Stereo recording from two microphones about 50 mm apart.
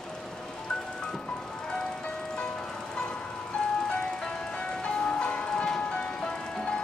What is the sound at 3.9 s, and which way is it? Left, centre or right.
Ice cream truck, centre.